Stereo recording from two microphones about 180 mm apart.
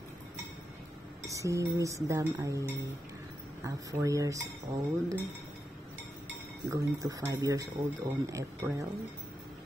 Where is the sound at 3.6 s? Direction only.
15° right (ahead or behind).